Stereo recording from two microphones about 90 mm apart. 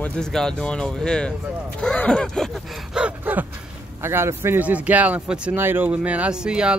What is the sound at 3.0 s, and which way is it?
Gasp, 15° right (ahead or behind).